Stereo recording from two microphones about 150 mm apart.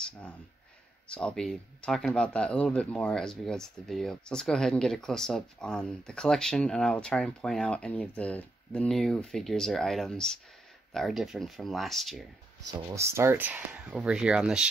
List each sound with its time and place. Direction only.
1.0 s speech: 5° left (ahead or behind)
12.9 s speech: 20° right (ahead or behind)